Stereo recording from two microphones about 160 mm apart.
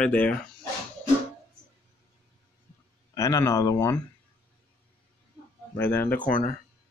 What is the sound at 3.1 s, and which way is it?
Speech, 20° left (ahead or behind).